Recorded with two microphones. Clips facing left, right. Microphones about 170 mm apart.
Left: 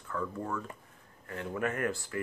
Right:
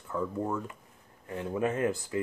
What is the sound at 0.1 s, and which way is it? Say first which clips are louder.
Speech: right 4 dB; 20° right (ahead or behind).